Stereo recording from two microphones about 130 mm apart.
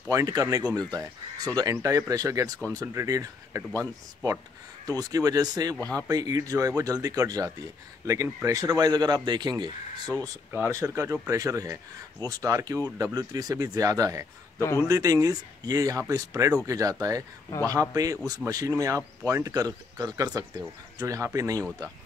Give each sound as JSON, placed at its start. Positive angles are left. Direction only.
{"t": 0.1, "sound": "speech", "side_deg": -25}
{"t": 4.8, "sound": "speech", "side_deg": -30}
{"t": 14.6, "sound": "speech", "side_deg": 20}
{"t": 14.9, "sound": "speech", "side_deg": -25}